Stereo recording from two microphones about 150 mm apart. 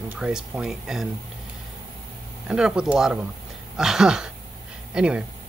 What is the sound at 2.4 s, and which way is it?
A man's voice, 5° right (ahead or behind).